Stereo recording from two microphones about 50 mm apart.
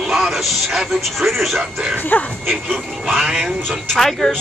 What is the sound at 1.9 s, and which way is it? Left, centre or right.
Speech, left.